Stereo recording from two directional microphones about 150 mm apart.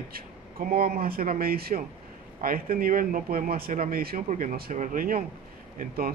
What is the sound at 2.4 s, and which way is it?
Speech, 75° right (ahead or behind).